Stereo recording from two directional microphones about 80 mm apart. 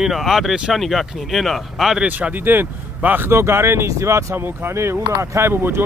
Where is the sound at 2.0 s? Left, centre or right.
Centre.